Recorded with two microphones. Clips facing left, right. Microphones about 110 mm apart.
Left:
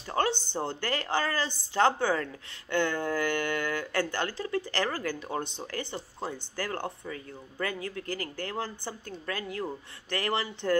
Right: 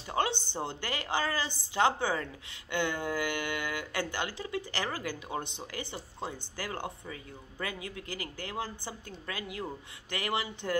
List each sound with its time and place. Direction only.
0.1 s speech: 15° right (ahead or behind)